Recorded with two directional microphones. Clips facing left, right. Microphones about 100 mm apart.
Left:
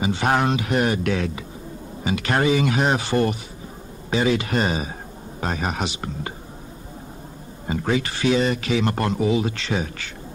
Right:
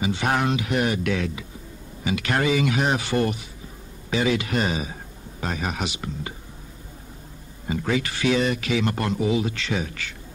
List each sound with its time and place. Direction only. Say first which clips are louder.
0.0 s speech: left 3 dB; 35° left (ahead or behind)
7.6 s speech: left 2 dB; 40° left (ahead or behind)